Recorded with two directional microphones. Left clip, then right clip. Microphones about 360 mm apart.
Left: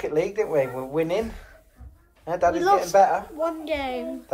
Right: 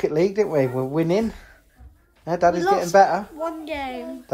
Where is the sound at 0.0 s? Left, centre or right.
Right.